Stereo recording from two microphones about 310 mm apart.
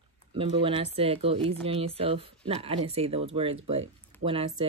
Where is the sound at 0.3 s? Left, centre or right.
Centre.